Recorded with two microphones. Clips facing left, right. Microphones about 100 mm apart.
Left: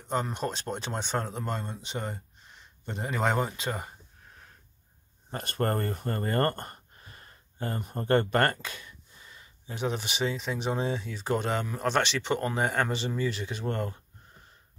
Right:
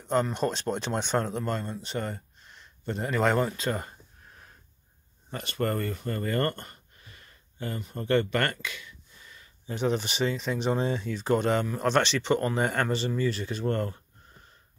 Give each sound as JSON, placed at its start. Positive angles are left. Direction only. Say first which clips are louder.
{"t": 0.1, "sound": "speech", "louder": "right 4 dB", "side_deg": 10}
{"t": 5.3, "sound": "speech", "louder": "even", "side_deg": 45}
{"t": 9.7, "sound": "speech", "louder": "right 4 dB", "side_deg": 5}